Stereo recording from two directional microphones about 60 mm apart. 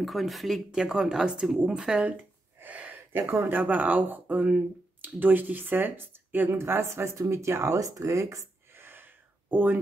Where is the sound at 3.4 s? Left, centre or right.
Right.